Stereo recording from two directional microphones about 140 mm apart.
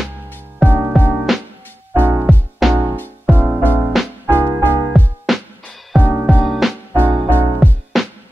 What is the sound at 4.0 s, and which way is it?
Music, centre (ahead or behind).